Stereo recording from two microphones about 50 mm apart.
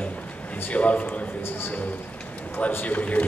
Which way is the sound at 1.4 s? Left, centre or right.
Left.